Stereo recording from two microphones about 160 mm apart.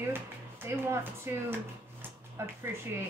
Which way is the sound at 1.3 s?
15° right (ahead or behind).